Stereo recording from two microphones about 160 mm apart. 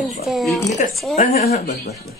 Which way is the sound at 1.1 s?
45° left (ahead or behind).